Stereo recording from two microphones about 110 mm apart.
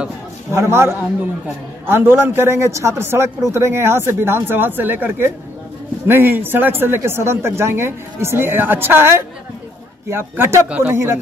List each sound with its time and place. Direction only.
0.5 s speech: 25° right (ahead or behind)